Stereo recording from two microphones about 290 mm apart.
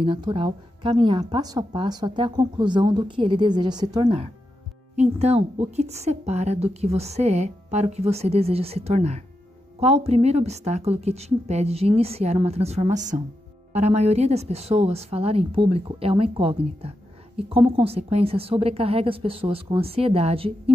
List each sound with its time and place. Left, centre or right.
0.0 s a woman's voice: centre